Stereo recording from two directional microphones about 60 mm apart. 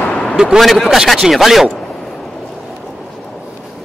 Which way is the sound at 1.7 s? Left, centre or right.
Centre.